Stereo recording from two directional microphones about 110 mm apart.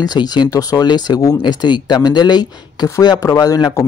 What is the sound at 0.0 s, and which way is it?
Speech, 40° left (ahead or behind).